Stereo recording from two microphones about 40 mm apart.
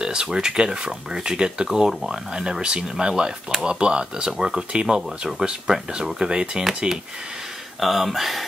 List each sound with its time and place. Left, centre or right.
0.0 s speech: centre
1.9 s speech: centre
2.6 s speech: right
6.2 s speech: right
7.8 s speech: centre